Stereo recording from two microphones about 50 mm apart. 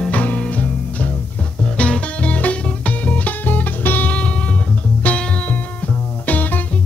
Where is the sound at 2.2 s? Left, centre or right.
Left.